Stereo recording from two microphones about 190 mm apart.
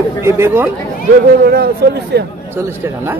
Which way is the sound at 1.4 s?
55° right (ahead or behind).